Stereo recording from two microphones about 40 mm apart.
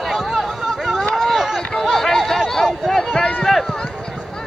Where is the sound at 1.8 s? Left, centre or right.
Centre.